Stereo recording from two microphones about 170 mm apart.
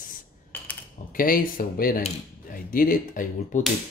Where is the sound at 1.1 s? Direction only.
55° left (ahead or behind).